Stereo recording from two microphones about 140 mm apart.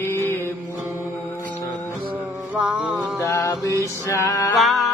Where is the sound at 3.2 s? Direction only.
20° left (ahead or behind).